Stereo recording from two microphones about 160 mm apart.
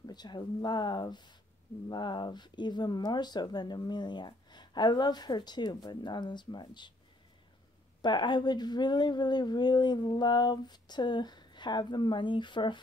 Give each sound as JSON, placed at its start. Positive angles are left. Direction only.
{"t": 0.0, "sound": "speech", "side_deg": 25}
{"t": 8.0, "sound": "speech", "side_deg": 30}